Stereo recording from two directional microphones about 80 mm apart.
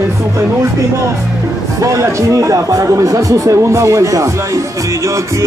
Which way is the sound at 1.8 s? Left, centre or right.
Right.